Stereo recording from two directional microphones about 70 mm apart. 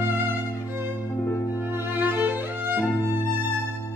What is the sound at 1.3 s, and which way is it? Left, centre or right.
Music, left.